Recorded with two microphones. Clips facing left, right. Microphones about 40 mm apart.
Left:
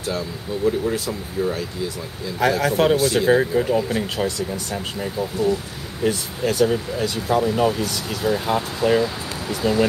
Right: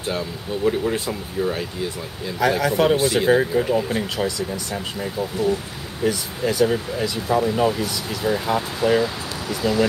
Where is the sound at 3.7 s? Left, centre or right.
Centre.